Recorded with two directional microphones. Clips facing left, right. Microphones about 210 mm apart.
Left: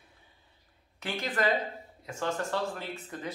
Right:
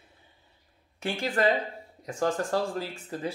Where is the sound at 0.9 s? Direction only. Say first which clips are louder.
Right 4 dB; 30° right (ahead or behind).